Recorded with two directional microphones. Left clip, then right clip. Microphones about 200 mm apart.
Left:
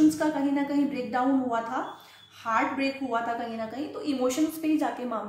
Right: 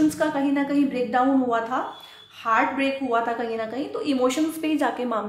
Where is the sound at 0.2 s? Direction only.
30° right (ahead or behind).